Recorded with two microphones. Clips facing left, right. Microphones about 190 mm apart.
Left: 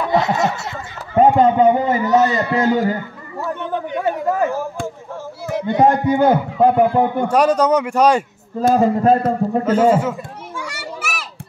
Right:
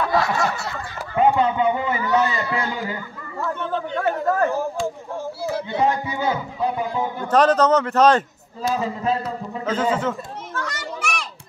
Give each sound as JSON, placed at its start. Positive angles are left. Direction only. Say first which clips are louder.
{"t": 0.0, "sound": "snicker", "louder": "left 4 dB", "side_deg": 20}
{"t": 1.1, "sound": "a sound", "louder": "left 6 dB", "side_deg": 40}
{"t": 3.3, "sound": "speech", "louder": "left 2 dB", "side_deg": 15}
{"t": 5.4, "sound": "a sound", "louder": "left 6 dB", "side_deg": 20}
{"t": 5.8, "sound": "a man's voice", "louder": "left 9 dB", "side_deg": 50}
{"t": 7.2, "sound": "a man's voice", "louder": "right 3 dB", "side_deg": 10}
{"t": 8.5, "sound": "a man's voice", "louder": "left 9 dB", "side_deg": 50}
{"t": 9.9, "sound": "children playing", "louder": "left 4 dB", "side_deg": 10}